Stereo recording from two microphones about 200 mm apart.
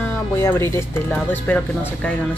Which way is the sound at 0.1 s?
10° left (ahead or behind).